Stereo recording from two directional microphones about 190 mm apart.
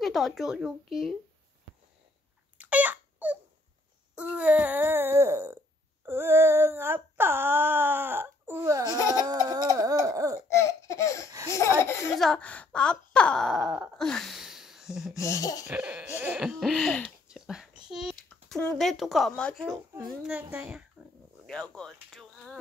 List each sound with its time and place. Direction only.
0.0 s speech: centre (ahead or behind)
2.5 s a sound: 10° right (ahead or behind)
9.2 s wail: 20° right (ahead or behind)
10.5 s laughter: 15° left (ahead or behind)
12.1 s speech: centre (ahead or behind)
15.2 s laughter: 15° left (ahead or behind)
15.6 s speech: 10° right (ahead or behind)
20.2 s speech: 10° right (ahead or behind)
21.9 s a sound: centre (ahead or behind)